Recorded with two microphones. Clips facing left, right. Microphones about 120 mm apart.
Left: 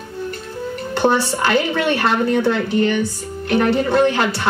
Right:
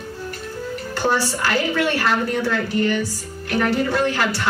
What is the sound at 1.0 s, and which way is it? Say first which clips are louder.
A woman's voice: left 4 dB; 25° left (ahead or behind).